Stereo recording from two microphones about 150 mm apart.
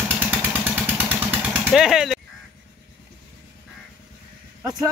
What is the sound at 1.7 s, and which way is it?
Speech, centre (ahead or behind).